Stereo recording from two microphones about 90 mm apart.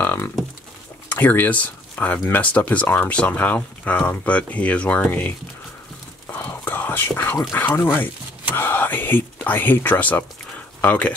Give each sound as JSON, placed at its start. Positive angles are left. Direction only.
{"t": 0.0, "sound": "livestock", "side_deg": 20}
{"t": 1.0, "sound": "speech", "side_deg": 25}
{"t": 6.2, "sound": "whispering", "side_deg": 25}
{"t": 7.5, "sound": "speech", "side_deg": 25}